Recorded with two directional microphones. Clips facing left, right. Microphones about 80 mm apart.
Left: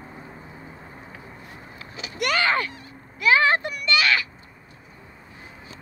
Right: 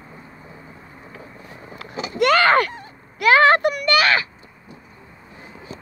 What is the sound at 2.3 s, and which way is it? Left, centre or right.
Speech, right.